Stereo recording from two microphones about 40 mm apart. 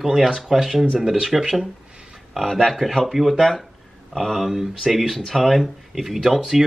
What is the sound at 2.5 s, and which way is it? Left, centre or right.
Speech, centre.